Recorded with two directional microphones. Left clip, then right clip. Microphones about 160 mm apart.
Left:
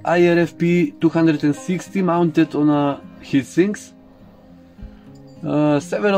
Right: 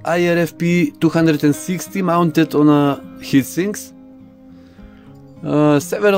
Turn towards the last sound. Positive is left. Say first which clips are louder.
# right 4 dB
turn(degrees=-70)  # may be behind; listen again after turning